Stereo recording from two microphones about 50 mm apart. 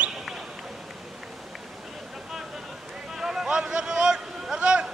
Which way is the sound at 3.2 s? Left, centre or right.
Centre.